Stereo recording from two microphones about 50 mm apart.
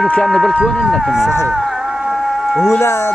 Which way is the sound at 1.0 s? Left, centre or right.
Centre.